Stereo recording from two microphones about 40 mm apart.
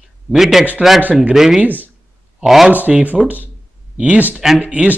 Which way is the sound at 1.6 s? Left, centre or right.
Right.